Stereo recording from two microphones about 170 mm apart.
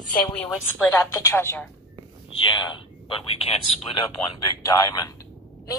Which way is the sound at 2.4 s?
25° left (ahead or behind).